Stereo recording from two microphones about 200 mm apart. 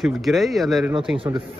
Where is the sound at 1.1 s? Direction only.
25° right (ahead or behind).